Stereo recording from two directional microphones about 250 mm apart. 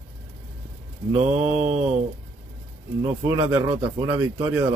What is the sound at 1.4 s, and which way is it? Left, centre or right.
Mantra, right.